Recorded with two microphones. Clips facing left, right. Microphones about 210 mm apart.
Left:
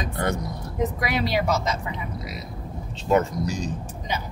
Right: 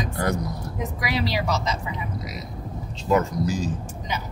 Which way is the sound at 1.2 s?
55° left (ahead or behind).